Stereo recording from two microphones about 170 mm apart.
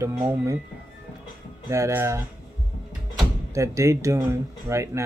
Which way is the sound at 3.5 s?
15° right (ahead or behind).